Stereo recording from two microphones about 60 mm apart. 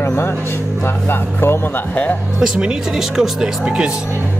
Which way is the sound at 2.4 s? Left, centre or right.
Centre.